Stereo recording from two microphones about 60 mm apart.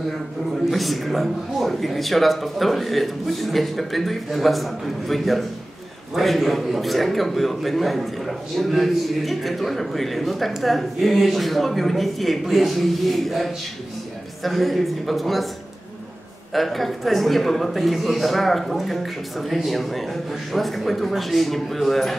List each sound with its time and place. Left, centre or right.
0.7 s a man's voice: centre
16.5 s a man's voice: centre